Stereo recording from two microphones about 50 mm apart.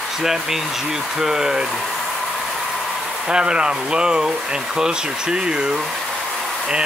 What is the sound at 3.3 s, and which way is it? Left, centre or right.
Speech, centre.